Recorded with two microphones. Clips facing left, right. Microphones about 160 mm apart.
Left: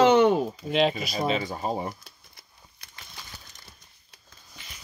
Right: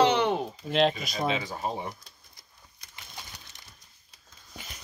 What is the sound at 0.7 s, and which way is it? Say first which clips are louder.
Speech: even; 5° left (ahead or behind).